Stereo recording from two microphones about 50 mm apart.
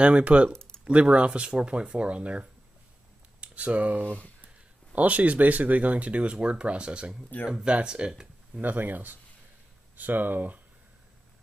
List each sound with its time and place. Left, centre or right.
0.0 s speech: right
0.5 s a sound: centre
0.8 s speech: right
8.5 s speech: right